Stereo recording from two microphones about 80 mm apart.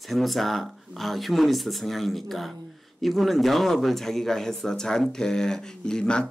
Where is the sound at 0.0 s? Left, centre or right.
Centre.